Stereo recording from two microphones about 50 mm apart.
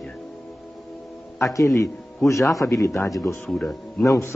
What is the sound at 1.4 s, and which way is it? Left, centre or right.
A man's voice, left.